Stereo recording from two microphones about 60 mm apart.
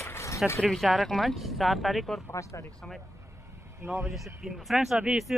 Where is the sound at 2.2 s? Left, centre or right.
Left.